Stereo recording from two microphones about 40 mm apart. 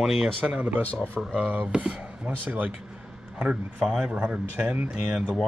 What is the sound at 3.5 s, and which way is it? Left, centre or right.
A man's voice, right.